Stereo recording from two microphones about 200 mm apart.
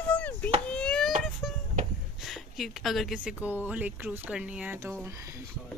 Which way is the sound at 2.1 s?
Centre (ahead or behind).